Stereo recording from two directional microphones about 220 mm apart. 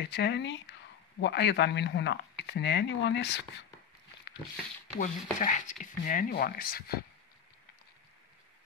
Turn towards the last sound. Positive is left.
turn(degrees=45)  # may be behind; listen again after turning